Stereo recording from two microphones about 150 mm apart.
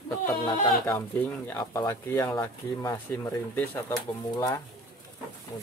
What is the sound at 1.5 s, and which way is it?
Speech, 25° left (ahead or behind).